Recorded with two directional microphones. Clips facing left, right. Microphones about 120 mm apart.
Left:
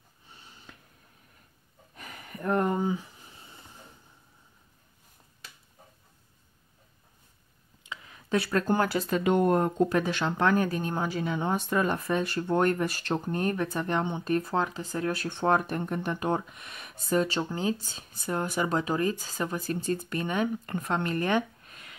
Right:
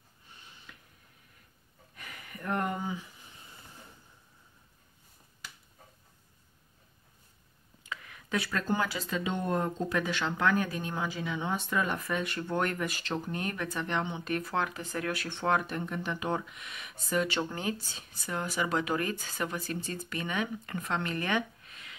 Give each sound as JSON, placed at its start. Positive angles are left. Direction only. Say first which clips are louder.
{"t": 0.4, "sound": "wheeze", "louder": "left 3 dB", "side_deg": 35}
{"t": 2.0, "sound": "a sound", "louder": "left 4 dB", "side_deg": 35}
{"t": 7.8, "sound": "a sound", "louder": "right 1 dB", "side_deg": 25}
{"t": 8.5, "sound": "speech", "louder": "left 6 dB", "side_deg": 50}
{"t": 15.2, "sound": "speech", "louder": "left 4 dB", "side_deg": 45}
{"t": 18.1, "sound": "speech", "louder": "left 4 dB", "side_deg": 50}
{"t": 19.4, "sound": "speech", "louder": "left 5 dB", "side_deg": 40}